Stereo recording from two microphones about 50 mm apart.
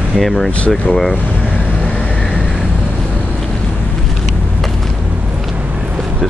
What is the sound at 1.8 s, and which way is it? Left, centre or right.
Vehicle, left.